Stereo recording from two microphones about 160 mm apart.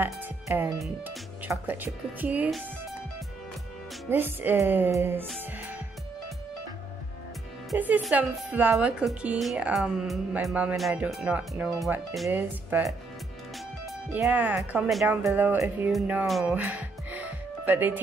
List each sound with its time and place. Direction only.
0.0 s music: 15° right (ahead or behind)
1.0 s speech: 10° right (ahead or behind)
4.1 s speech: 15° right (ahead or behind)
7.7 s speech: 10° right (ahead or behind)
12.3 s speech: 10° right (ahead or behind)
14.1 s speech: 10° right (ahead or behind)
15.2 s speech: 15° right (ahead or behind)
15.9 s speech: 5° right (ahead or behind)